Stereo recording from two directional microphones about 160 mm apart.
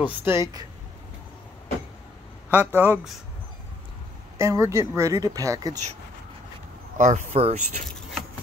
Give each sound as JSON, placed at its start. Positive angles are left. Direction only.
{"t": 0.0, "sound": "speech", "side_deg": -15}
{"t": 2.5, "sound": "speech", "side_deg": -10}
{"t": 4.4, "sound": "speech", "side_deg": -15}
{"t": 7.0, "sound": "speech", "side_deg": -45}